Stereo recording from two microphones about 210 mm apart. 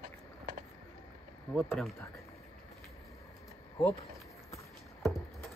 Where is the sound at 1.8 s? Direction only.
5° left (ahead or behind).